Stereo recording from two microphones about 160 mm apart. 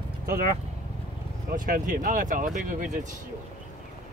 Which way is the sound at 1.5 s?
60° right (ahead or behind).